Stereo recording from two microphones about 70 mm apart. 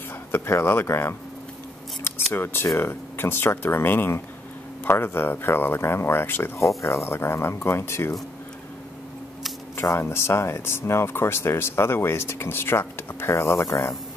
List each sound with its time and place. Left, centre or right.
0.3 s speech: left
2.3 s speech: left
9.8 s speech: left